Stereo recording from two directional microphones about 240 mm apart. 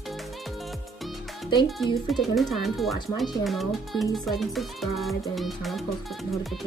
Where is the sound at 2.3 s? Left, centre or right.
Centre.